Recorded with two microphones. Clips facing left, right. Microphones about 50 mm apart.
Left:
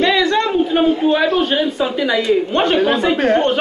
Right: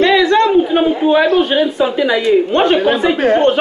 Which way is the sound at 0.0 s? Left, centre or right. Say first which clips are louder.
Right 4 dB; centre.